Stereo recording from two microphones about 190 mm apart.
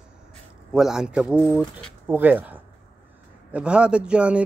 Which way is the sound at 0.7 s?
Centre (ahead or behind).